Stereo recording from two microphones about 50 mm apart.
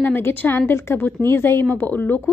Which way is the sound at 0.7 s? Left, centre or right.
Left.